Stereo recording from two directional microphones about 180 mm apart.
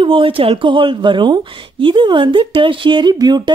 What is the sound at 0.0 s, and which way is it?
Speech, 30° right (ahead or behind).